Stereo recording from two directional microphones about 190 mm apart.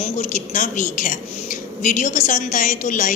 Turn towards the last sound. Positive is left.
turn(degrees=45)  # may be behind; listen again after turning